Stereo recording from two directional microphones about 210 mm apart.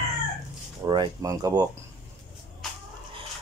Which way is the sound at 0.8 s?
20° right (ahead or behind).